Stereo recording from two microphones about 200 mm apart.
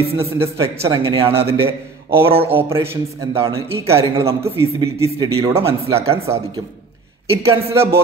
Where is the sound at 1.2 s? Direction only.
30° right (ahead or behind).